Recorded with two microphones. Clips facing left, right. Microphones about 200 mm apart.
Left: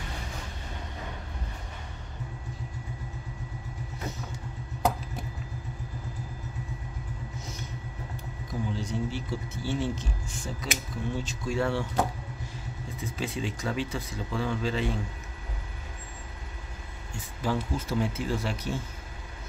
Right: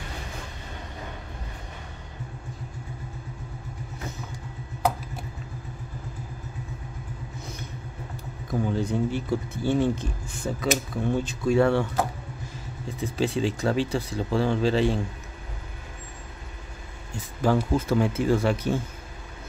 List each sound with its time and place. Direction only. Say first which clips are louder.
7.3 s vehicle: right 2 dB; 60° right (ahead or behind)
8.5 s speech: right 7 dB; 55° right (ahead or behind)
13.2 s speech: right 8 dB; 35° right (ahead or behind)
17.4 s speech: right 7 dB; 55° right (ahead or behind)